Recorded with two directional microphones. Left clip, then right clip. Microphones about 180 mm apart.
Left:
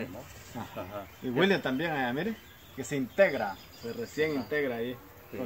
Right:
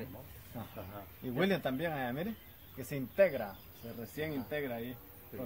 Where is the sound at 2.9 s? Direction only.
40° right (ahead or behind).